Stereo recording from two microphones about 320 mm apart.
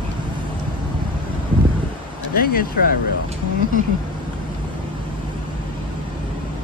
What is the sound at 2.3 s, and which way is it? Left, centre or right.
Speech, left.